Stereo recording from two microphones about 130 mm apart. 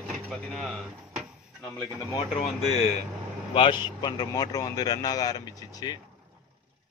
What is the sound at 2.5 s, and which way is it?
Speech, 55° left (ahead or behind).